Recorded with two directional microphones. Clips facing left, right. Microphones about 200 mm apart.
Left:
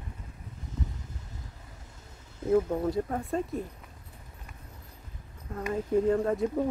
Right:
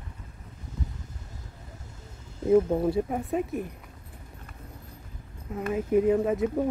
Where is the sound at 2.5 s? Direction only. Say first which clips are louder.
Right 4 dB; 25° right (ahead or behind).